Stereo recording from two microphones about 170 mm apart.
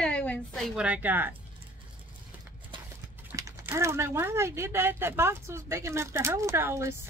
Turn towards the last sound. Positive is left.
turn(degrees=-15)  # may be behind; listen again after turning